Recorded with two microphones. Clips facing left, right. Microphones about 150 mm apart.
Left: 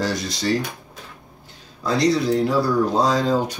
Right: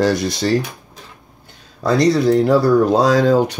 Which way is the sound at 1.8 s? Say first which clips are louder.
Right 5 dB; 60° right (ahead or behind).